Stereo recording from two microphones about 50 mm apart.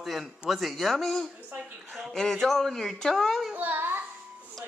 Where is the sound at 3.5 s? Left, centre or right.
Right.